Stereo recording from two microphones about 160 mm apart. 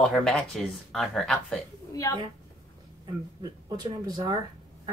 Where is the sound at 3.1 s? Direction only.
25° right (ahead or behind).